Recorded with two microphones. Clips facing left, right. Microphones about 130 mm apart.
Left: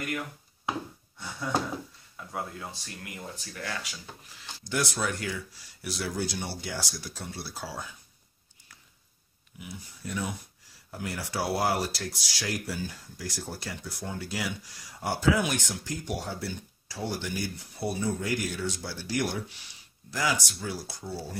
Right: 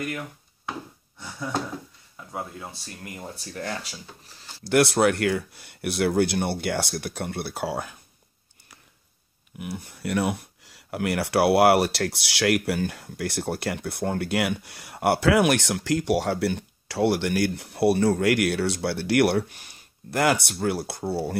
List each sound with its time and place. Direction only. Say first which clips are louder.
3.3 s speech: right 6 dB; 35° right (ahead or behind)
4.6 s speech: right 11 dB; 65° right (ahead or behind)
9.6 s speech: right 9 dB; 65° right (ahead or behind)